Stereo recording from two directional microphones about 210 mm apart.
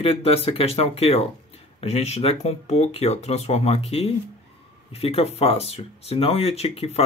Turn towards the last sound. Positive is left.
turn(degrees=30)  # may be behind; listen again after turning